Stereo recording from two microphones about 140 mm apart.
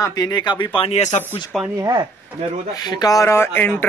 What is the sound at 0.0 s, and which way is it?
A man's voice, 25° left (ahead or behind).